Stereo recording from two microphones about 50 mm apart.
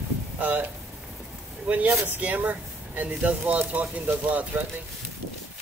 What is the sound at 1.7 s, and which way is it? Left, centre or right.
Speech, right.